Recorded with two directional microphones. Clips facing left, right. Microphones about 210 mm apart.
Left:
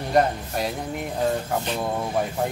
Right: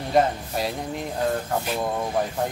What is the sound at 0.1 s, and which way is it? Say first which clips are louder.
Speech: even; centre (ahead or behind).